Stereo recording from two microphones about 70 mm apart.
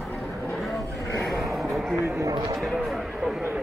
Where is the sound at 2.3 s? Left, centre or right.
Right.